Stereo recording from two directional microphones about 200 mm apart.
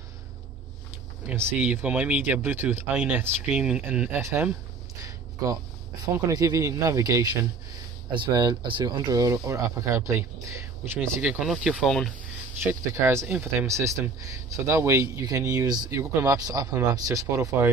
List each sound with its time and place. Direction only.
1.2 s speech: 10° right (ahead or behind)
5.0 s a sound: 15° right (ahead or behind)
6.1 s speech: 15° right (ahead or behind); by 12.1 s centre (ahead or behind)
12.6 s speech: 15° right (ahead or behind)